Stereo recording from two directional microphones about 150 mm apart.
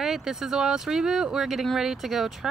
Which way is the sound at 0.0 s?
Centre (ahead or behind).